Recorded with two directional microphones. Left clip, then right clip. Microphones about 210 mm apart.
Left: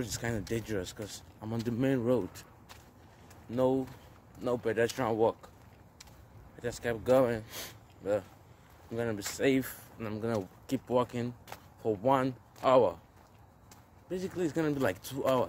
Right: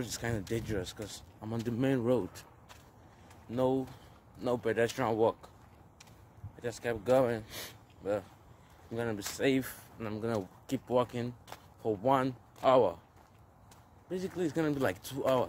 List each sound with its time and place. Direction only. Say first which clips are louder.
0.0 s speech: left 1 dB; centre (ahead or behind)
3.4 s speech: left 2 dB; centre (ahead or behind)
4.4 s speech: even; 20° right (ahead or behind)
6.6 s speech: left 1 dB; 5° left (ahead or behind)
14.0 s speech: left 1 dB; centre (ahead or behind)